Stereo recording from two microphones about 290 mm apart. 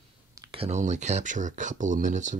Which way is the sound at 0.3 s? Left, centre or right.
Centre.